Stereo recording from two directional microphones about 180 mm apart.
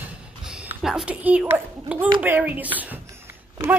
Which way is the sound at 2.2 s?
10° right (ahead or behind).